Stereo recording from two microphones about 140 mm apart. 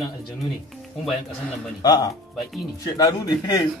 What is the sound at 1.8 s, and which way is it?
Speech, 25° left (ahead or behind).